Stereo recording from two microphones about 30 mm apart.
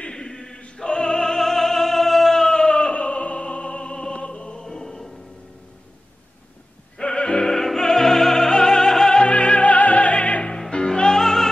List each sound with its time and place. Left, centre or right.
0.1 s chant: left
0.8 s music: left
2.7 s opera: left
3.8 s music: centre
4.1 s music: left
4.6 s music: centre
7.0 s music: left
7.3 s opera: centre
7.8 s music: centre
9.3 s music: left
10.7 s music: left